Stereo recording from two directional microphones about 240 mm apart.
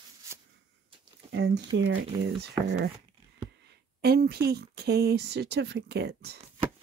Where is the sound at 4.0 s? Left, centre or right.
Right.